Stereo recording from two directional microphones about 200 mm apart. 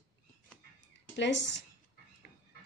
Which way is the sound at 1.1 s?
65° left (ahead or behind).